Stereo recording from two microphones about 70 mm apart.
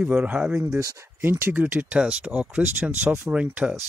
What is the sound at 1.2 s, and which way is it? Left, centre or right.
Speech, right.